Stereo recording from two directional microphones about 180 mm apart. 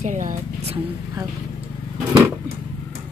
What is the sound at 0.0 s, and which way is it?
Speech, 45° right (ahead or behind).